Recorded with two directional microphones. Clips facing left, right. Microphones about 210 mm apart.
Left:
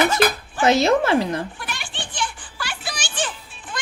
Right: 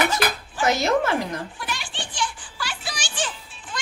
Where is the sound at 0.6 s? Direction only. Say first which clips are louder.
Left 4 dB; 25° left (ahead or behind).